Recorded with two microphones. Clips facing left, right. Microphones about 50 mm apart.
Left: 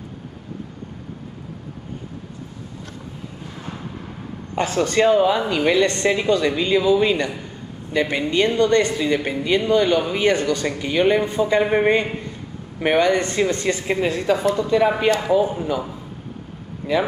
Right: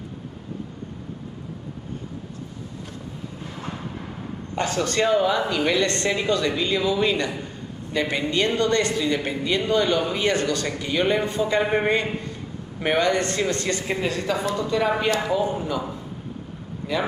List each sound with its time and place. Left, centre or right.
4.6 s speech: centre
13.1 s speech: centre
16.8 s speech: left